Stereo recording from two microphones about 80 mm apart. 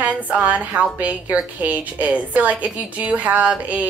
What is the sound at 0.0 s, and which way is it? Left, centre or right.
A woman's voice, centre.